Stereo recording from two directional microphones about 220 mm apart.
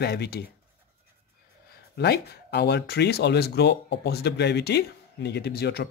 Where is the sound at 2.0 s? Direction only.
45° left (ahead or behind).